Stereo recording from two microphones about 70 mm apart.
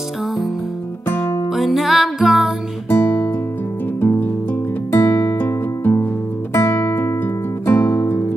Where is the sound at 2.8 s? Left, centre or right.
Left.